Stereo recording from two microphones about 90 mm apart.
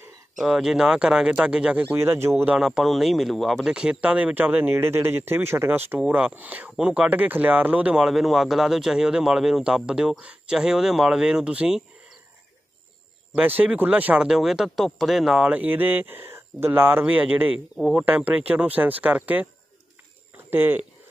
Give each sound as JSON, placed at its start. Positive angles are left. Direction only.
{"t": 0.4, "sound": "speech", "side_deg": -5}
{"t": 1.9, "sound": "speech", "side_deg": -25}
{"t": 2.6, "sound": "speech", "side_deg": 0}
{"t": 3.7, "sound": "speech", "side_deg": -10}
{"t": 13.3, "sound": "speech", "side_deg": -20}
{"t": 14.2, "sound": "speech", "side_deg": -5}
{"t": 15.5, "sound": "speech", "side_deg": -20}